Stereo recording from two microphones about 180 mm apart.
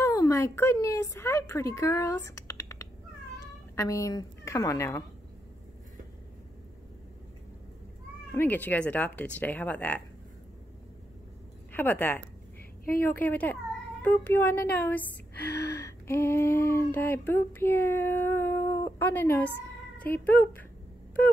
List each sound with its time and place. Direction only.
0.0 s a woman's voice: 15° left (ahead or behind)
8.3 s a woman's voice: 10° left (ahead or behind)
11.7 s a woman's voice: 10° left (ahead or behind)
15.8 s a sound: 15° left (ahead or behind)
20.0 s speech: 10° left (ahead or behind)